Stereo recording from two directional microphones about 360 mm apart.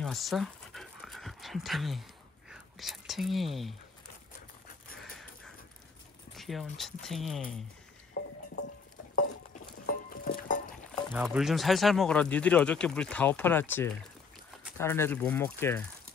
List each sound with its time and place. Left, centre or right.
0.0 s pant: centre
2.5 s speech: centre
5.0 s a sound: centre
6.3 s speech: centre
8.2 s a sound: left
9.1 s music: left
11.1 s speech: centre